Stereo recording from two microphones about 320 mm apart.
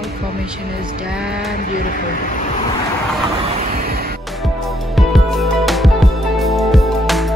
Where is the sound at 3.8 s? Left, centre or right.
Right.